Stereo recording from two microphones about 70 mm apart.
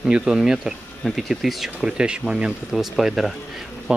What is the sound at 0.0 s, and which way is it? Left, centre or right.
Speech, centre.